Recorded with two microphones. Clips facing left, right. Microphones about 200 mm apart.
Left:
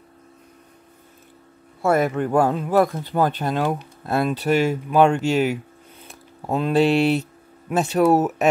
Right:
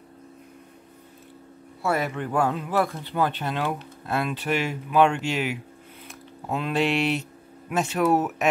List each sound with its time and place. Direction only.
1.8 s speech: 50° left (ahead or behind)